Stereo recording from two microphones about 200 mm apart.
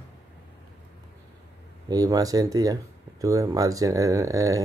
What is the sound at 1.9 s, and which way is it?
Speech, 20° right (ahead or behind).